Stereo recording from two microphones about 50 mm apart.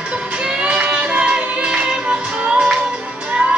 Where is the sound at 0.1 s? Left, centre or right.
Right.